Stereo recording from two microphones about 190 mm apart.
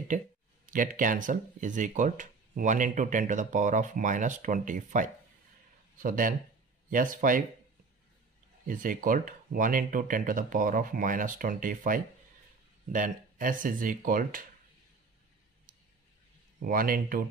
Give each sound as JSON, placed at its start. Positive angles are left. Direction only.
{"t": 0.1, "sound": "speech", "side_deg": -40}
{"t": 8.6, "sound": "speech", "side_deg": -45}
{"t": 16.5, "sound": "speech", "side_deg": -50}